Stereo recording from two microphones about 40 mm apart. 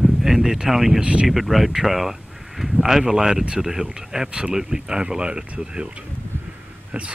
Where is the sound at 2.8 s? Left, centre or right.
Centre; by 5.9 s right.